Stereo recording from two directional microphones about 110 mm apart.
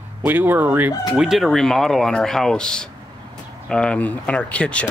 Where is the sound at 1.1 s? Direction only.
5° right (ahead or behind); by 4.8 s 10° left (ahead or behind).